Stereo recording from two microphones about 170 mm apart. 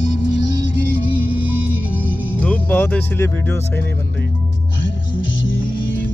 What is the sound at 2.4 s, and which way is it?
Music, 10° left (ahead or behind).